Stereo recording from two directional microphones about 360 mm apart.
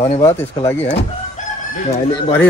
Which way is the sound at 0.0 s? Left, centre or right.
Centre.